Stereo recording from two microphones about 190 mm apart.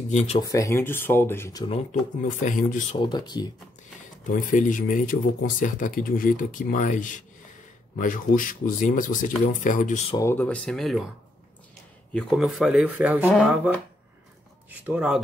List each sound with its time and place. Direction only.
0.1 s speech: 35° left (ahead or behind)
0.4 s speech: 15° left (ahead or behind)
2.2 s speech: 45° left (ahead or behind)
3.0 s speech: 20° left (ahead or behind)
4.3 s speech: 45° left (ahead or behind)
10.1 s speech: 10° left (ahead or behind)
12.1 s speech: centre (ahead or behind)
14.7 s speech: 5° right (ahead or behind)